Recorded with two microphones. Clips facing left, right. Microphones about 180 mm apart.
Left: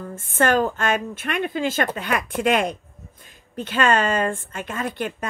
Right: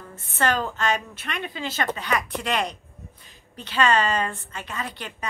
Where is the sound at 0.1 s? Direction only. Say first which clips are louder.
Left 5 dB; 50° left (ahead or behind).